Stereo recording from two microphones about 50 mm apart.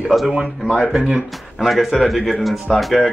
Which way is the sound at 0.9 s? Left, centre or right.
Centre.